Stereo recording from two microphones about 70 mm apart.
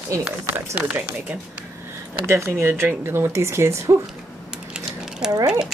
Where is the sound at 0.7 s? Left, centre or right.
Right.